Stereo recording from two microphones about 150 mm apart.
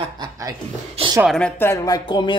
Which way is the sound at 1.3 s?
5° left (ahead or behind).